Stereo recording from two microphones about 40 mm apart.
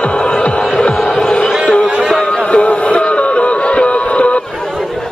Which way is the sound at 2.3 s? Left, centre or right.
Left.